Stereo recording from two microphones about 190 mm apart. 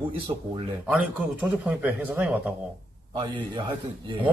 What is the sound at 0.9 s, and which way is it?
A man's voice, 5° right (ahead or behind).